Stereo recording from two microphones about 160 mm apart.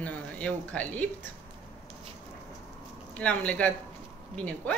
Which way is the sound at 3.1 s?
10° left (ahead or behind).